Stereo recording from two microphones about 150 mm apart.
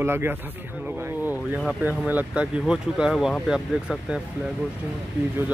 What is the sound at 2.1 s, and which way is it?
Speech, 10° right (ahead or behind).